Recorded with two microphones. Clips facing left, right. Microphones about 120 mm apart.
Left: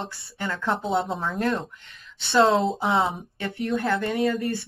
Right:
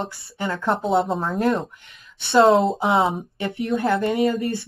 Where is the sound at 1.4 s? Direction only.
25° right (ahead or behind).